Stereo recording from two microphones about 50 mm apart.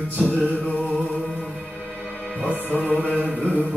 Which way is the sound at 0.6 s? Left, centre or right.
Left.